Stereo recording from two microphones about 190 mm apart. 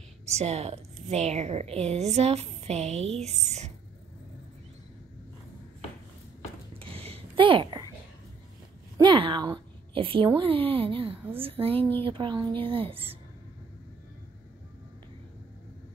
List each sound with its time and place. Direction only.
0.3 s a woman's voice: 35° right (ahead or behind)
6.8 s a sound: 30° right (ahead or behind)
8.9 s a woman's voice: 25° right (ahead or behind)